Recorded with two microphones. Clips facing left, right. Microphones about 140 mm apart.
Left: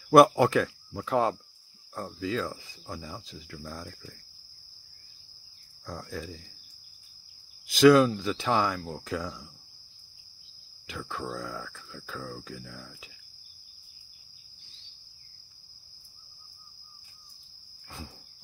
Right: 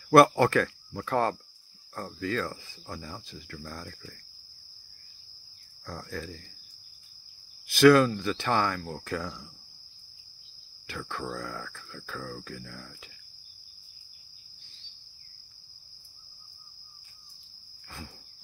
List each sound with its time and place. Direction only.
0.1 s speech: 15° left (ahead or behind)
5.9 s speech: 10° left (ahead or behind)
7.7 s speech: 15° left (ahead or behind)
10.9 s speech: 10° left (ahead or behind)
17.8 s cricket: 15° left (ahead or behind)